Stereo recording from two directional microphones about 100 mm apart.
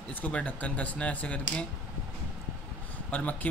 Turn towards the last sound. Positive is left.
turn(degrees=15)  # may be behind; listen again after turning